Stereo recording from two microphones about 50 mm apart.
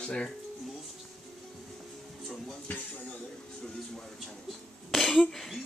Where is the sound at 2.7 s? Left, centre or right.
Left.